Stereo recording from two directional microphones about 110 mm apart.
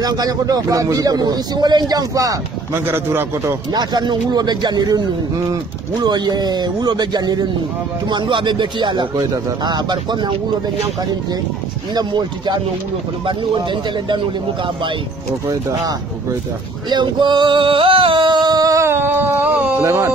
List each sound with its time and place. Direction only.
0.0 s speech: 35° right (ahead or behind)
2.9 s a man's voice: 20° right (ahead or behind)
3.7 s speech: 40° right (ahead or behind)
6.0 s speech: 40° right (ahead or behind)
11.9 s speech: 40° right (ahead or behind)
16.9 s singing: 45° right (ahead or behind); by 19.6 s 20° right (ahead or behind)
19.8 s a man's voice: 25° right (ahead or behind)